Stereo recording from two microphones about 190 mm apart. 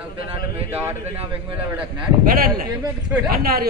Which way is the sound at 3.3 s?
50° right (ahead or behind).